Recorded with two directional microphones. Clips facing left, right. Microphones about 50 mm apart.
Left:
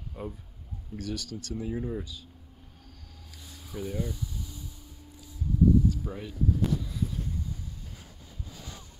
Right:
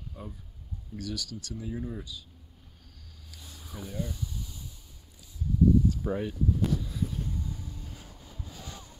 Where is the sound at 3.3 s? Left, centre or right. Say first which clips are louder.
Left 1 dB; left.